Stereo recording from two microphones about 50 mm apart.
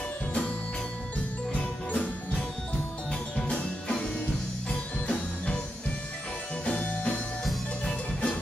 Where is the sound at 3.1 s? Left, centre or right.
Centre.